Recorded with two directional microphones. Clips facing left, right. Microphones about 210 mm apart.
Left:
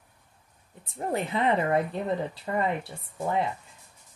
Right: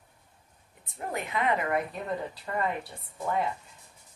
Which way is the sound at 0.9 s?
30° left (ahead or behind).